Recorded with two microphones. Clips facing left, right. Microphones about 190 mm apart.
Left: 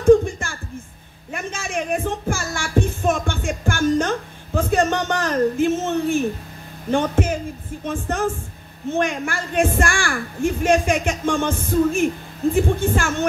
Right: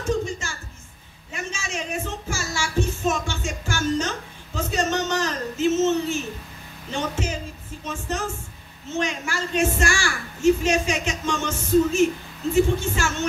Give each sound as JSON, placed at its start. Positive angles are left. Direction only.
{"t": 0.0, "sound": "a sound", "side_deg": 55}
{"t": 1.3, "sound": "music", "side_deg": 55}
{"t": 6.9, "sound": "a woman's voice", "side_deg": 55}